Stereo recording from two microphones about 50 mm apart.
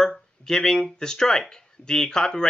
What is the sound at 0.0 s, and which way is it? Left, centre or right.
Speech, centre.